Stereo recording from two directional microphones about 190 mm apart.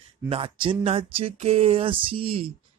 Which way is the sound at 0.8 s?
30° right (ahead or behind).